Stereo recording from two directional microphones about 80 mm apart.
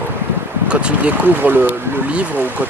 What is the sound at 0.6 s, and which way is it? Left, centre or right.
Speech, centre.